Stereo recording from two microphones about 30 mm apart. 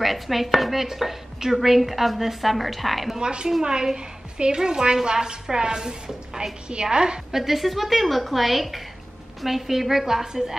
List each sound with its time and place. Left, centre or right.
0.0 s dishes: centre
3.2 s a woman's voice: right
7.2 s dishes: centre
9.4 s a woman's voice: centre
10.2 s speech: right